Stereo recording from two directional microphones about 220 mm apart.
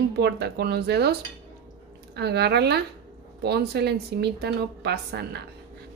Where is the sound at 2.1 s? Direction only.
50° right (ahead or behind).